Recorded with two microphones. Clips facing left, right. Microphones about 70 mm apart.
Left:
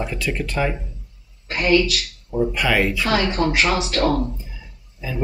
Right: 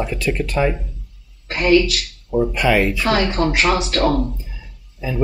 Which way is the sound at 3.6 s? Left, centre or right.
Centre.